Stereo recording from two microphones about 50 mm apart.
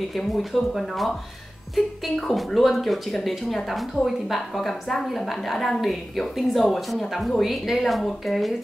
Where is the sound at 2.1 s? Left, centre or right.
Centre.